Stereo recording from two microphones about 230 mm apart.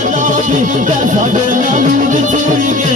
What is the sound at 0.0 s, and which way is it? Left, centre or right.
Music, right.